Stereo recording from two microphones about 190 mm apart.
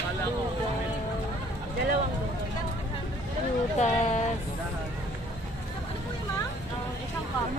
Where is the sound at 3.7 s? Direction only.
35° left (ahead or behind).